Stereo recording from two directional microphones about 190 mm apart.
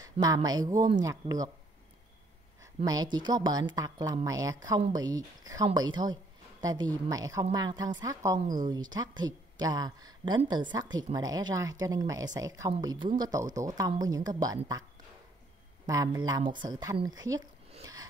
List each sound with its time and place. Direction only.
0.0 s speech: 20° right (ahead or behind)
2.6 s speech: 20° right (ahead or behind)
15.9 s speech: 20° right (ahead or behind)